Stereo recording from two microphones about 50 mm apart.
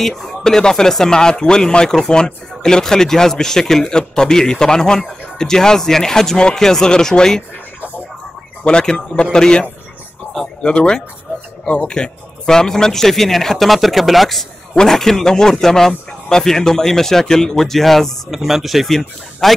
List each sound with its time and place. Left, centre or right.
0.0 s speech: centre
8.6 s speech: centre